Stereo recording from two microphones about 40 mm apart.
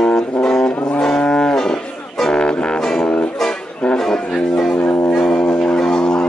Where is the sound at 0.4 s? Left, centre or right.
Left.